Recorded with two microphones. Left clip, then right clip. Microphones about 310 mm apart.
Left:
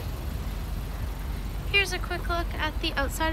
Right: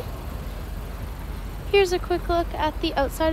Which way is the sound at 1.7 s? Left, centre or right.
Centre.